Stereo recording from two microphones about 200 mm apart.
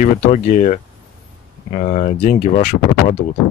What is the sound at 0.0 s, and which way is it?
Speech, 35° left (ahead or behind).